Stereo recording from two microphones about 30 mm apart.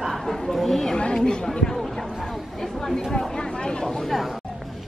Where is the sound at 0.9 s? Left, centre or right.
Left.